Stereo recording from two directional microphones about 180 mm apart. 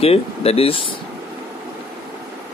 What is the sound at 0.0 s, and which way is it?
Speech, 35° left (ahead or behind).